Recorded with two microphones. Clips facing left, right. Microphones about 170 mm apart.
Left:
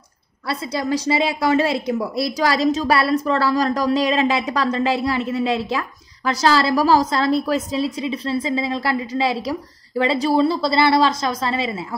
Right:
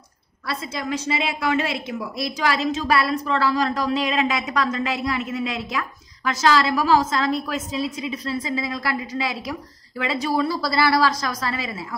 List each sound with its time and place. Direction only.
0.5 s a woman's voice: 30° left (ahead or behind)